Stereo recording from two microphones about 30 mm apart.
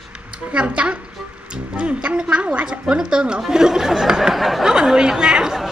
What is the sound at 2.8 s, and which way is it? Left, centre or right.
Speech, right.